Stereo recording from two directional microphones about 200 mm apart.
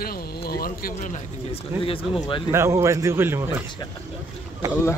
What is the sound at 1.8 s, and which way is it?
Speech, 25° left (ahead or behind).